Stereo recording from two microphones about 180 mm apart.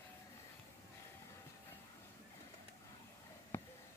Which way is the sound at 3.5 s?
10° left (ahead or behind).